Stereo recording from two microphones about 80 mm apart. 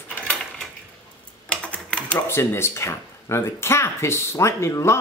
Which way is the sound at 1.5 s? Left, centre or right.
Centre.